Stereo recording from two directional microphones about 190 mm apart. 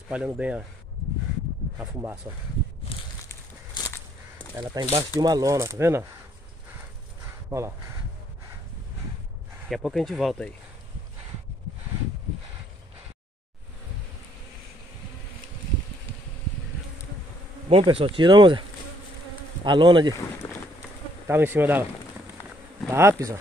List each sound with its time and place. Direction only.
0.1 s speech: 5° right (ahead or behind)
1.8 s speech: 10° right (ahead or behind)
3.3 s a sound: 15° left (ahead or behind)
4.6 s speech: 20° right (ahead or behind)
7.4 s speech: 15° right (ahead or behind)
9.7 s speech: centre (ahead or behind)
17.6 s speech: 30° right (ahead or behind)
21.3 s speech: 10° right (ahead or behind)
22.8 s speech: 15° right (ahead or behind)